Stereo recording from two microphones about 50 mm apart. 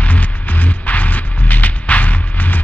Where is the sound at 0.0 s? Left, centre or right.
Left.